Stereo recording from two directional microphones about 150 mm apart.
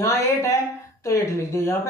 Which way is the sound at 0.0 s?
20° left (ahead or behind).